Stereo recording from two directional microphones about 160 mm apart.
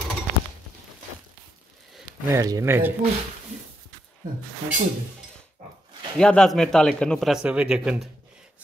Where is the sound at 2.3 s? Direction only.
20° right (ahead or behind).